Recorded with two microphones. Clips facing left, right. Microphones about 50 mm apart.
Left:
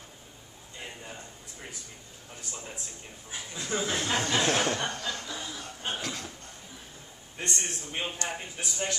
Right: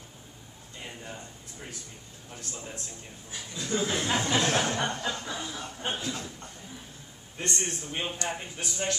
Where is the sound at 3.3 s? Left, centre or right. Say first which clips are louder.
Right 1 dB; left.